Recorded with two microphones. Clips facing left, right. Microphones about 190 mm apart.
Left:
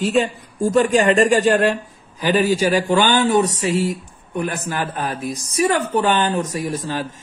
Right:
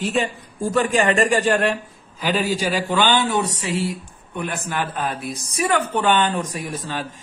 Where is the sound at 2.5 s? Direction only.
45° left (ahead or behind).